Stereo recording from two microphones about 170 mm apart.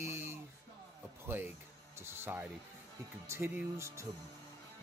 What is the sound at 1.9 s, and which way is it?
Music, 15° right (ahead or behind).